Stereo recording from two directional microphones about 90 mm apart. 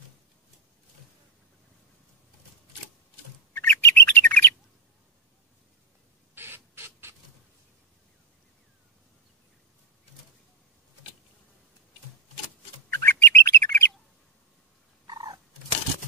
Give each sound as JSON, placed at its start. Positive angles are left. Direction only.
{"t": 3.5, "sound": "bird", "side_deg": 25}
{"t": 6.3, "sound": "rodents", "side_deg": -25}
{"t": 12.9, "sound": "bird", "side_deg": 30}
{"t": 15.0, "sound": "cat", "side_deg": -50}